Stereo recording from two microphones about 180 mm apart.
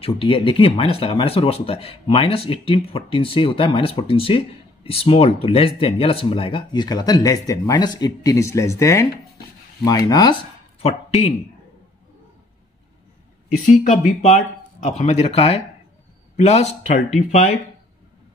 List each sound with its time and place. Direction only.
0.0 s speech: 30° left (ahead or behind)
10.8 s speech: 35° left (ahead or behind)
13.7 s speech: 45° left (ahead or behind)